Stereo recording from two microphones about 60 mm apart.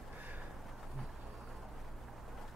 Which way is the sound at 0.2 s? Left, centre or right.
Right.